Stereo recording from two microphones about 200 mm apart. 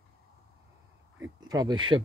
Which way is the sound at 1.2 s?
20° right (ahead or behind).